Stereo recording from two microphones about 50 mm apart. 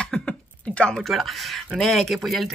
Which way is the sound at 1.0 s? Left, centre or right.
Centre.